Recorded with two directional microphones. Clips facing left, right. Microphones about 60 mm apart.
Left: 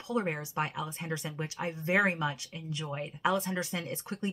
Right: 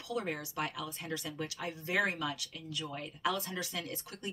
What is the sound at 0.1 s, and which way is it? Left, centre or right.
Speech, left.